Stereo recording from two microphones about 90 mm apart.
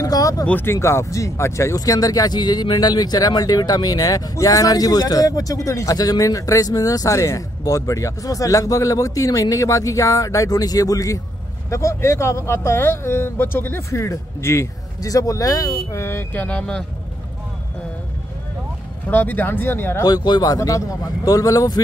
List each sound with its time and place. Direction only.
0.0 s a sound: 40° left (ahead or behind)
0.5 s speech: 20° left (ahead or behind)
0.7 s speech: 35° left (ahead or behind)
16.4 s speech: 10° left (ahead or behind)
19.0 s speech: 20° left (ahead or behind)
20.0 s a man's voice: 50° left (ahead or behind)